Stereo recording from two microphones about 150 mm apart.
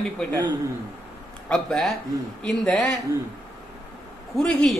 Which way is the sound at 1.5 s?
5° left (ahead or behind).